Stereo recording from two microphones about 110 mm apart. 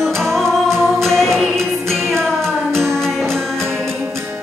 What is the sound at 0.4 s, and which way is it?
Music, 5° left (ahead or behind).